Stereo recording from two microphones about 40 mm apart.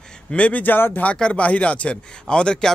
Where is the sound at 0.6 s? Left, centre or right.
Left.